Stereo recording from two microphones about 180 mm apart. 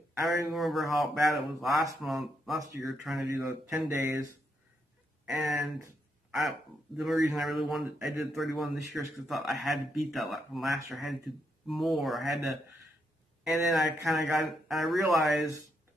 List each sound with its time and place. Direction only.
0.3 s speech: centre (ahead or behind)
3.8 s speech: 20° right (ahead or behind)
5.2 s speech: centre (ahead or behind)
7.0 s speech: centre (ahead or behind)